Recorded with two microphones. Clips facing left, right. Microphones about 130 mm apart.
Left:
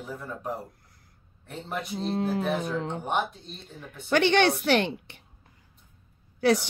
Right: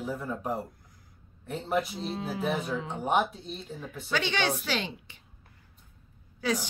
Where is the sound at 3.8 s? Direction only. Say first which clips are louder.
Left 8 dB; 60° left (ahead or behind).